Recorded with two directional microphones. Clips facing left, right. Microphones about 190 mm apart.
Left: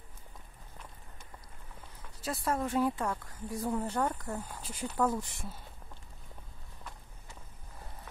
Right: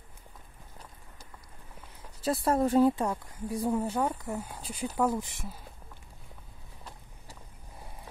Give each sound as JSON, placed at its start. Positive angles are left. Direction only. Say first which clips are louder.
{"t": 2.2, "sound": "a woman's voice", "louder": "right 7 dB", "side_deg": -35}